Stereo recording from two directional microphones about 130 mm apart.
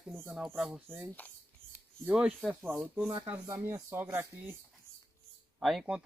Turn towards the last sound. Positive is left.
turn(degrees=-5)  # may be behind; listen again after turning